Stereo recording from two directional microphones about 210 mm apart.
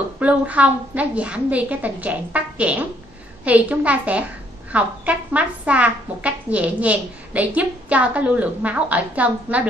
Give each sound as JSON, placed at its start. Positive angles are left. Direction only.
{"t": 0.2, "sound": "a woman's voice", "side_deg": -5}